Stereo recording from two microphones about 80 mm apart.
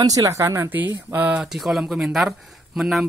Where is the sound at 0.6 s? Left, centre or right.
Right.